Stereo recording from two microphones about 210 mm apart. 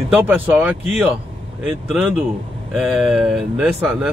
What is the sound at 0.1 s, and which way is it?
Speech, 10° right (ahead or behind).